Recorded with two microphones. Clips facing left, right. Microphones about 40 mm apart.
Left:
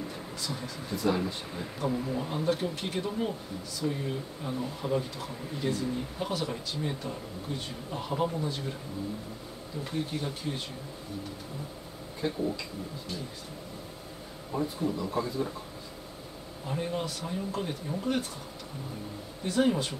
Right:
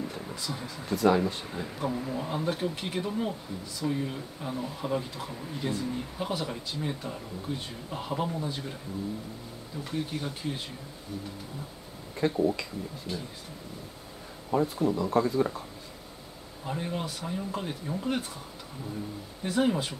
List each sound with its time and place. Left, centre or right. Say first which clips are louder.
0.9 s speech: right 5 dB; right
1.2 s speech: right 3 dB; centre
9.8 s speech: even; centre
12.2 s speech: right 4 dB; right
14.6 s speech: right 3 dB; right
15.0 s speech: right 6 dB; right
16.6 s speech: left 1 dB; centre
19.4 s speech: even; centre